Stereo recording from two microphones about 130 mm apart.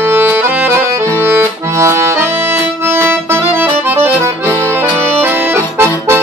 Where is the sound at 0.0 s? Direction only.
20° right (ahead or behind).